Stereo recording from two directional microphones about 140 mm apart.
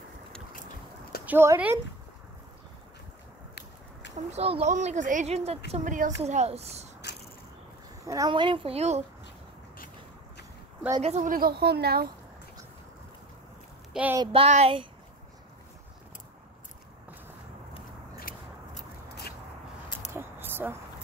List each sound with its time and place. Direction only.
1.2 s speech: 15° right (ahead or behind)
4.3 s speech: 45° right (ahead or behind)
5.9 s speech: 65° right (ahead or behind); by 6.9 s 50° right (ahead or behind)
8.0 s speech: 25° right (ahead or behind)
8.3 s speech: 35° right (ahead or behind)
11.0 s speech: 50° right (ahead or behind)
11.2 s a woman's voice: 90° right
14.1 s speech: 35° right (ahead or behind)
18.8 s a sound: 90° left
20.1 s a sound: 15° right (ahead or behind)